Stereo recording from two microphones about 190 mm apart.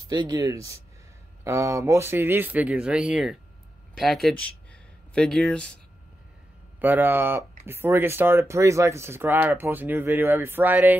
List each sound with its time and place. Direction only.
0.1 s speech: 20° right (ahead or behind); by 5.8 s 5° left (ahead or behind)
6.8 s speech: 10° right (ahead or behind)